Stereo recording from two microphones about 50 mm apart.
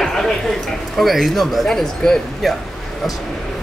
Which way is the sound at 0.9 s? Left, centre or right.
Centre.